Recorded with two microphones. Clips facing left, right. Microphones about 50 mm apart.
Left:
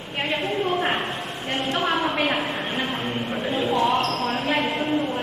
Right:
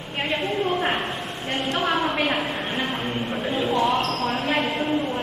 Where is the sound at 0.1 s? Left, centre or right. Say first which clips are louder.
Even; centre.